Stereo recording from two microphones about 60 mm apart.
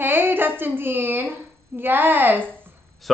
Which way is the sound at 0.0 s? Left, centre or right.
Right.